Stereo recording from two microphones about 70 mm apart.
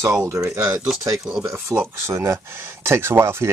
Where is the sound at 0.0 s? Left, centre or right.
Right.